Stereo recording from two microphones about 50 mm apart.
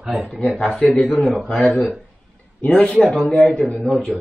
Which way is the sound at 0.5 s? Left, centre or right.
Centre.